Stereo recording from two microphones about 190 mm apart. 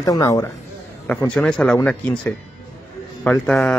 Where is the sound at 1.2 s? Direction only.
5° left (ahead or behind).